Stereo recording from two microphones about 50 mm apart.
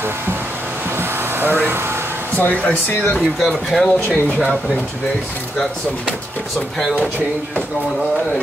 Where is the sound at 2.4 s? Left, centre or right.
Left.